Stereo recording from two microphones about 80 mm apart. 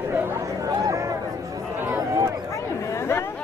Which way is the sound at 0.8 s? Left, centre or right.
Right.